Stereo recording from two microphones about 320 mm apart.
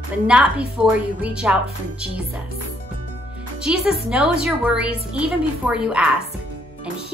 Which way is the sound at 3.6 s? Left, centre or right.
Centre.